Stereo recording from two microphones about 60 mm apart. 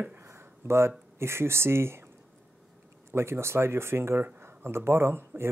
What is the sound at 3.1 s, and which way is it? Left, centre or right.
Speech, right.